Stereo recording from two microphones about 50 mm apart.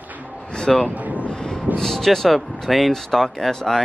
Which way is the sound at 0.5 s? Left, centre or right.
Centre.